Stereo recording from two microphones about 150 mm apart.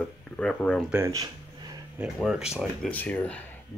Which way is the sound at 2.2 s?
5° right (ahead or behind).